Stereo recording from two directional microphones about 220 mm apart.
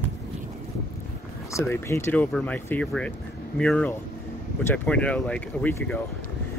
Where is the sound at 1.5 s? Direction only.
10° left (ahead or behind).